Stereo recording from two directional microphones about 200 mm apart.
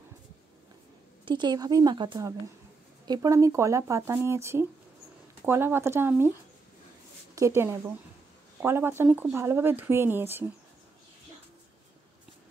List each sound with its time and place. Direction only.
1.2 s speech: 20° right (ahead or behind)
7.3 s speech: 15° right (ahead or behind)